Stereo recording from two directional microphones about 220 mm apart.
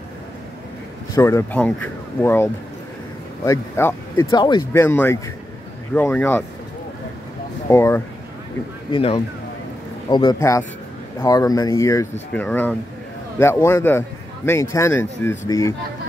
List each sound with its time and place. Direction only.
1.1 s speech: 10° left (ahead or behind)
4.7 s speech: 10° left (ahead or behind)
7.7 s speech: 10° left (ahead or behind)
8.9 s speech: 20° left (ahead or behind)